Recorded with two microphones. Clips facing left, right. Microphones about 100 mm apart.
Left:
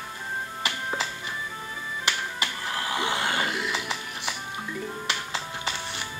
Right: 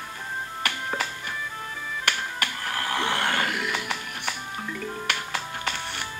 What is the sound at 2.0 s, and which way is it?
Music, 20° left (ahead or behind).